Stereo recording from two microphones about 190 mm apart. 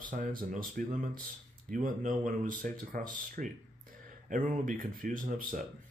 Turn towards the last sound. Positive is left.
turn(degrees=-45)  # may be behind; listen again after turning